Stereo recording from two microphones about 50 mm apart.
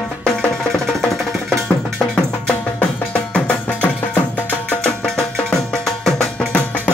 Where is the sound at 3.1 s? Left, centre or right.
Left.